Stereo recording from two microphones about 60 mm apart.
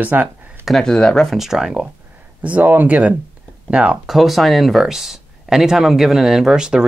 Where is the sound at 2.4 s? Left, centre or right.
Right.